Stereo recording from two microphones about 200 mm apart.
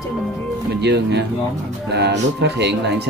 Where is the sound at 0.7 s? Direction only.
55° right (ahead or behind).